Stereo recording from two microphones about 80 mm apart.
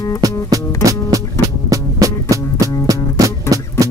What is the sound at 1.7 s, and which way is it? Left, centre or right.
Music, right.